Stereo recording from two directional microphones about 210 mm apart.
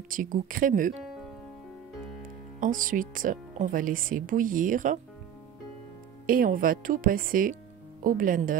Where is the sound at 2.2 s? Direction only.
40° right (ahead or behind).